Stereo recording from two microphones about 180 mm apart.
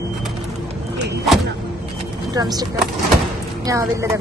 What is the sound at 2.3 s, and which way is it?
A woman's voice, 20° right (ahead or behind).